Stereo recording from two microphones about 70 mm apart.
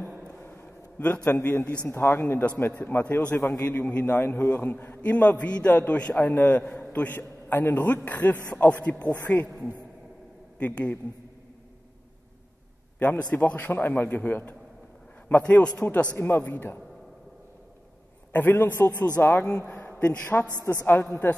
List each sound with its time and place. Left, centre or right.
0.5 s a sound: left
1.3 s a woman's voice: left
3.0 s a man's voice: left
4.0 s a man's voice: left; by 6.2 s centre
6.2 s a man's voice: left
10.6 s a man's voice: left
13.0 s a man's voice: left
16.2 s a man's voice: left
18.3 s a man's voice: left
20.8 s a woman's voice: left